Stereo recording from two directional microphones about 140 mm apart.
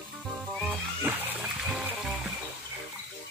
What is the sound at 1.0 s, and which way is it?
Music, 10° right (ahead or behind).